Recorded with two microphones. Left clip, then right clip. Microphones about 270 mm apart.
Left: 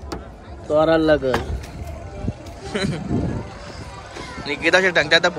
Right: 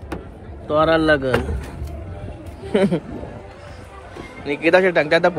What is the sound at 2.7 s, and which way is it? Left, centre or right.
Speech, centre.